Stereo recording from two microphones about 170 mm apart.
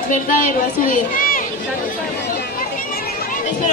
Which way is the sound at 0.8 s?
55° left (ahead or behind).